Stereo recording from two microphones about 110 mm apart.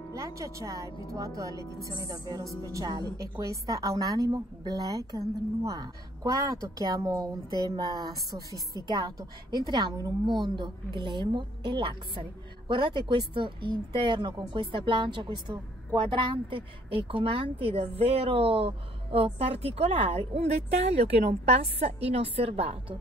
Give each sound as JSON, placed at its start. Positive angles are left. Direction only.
{"t": 0.1, "sound": "a woman's voice", "side_deg": -30}